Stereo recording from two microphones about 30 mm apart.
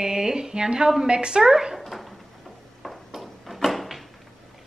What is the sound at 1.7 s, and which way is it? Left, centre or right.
Dog, centre.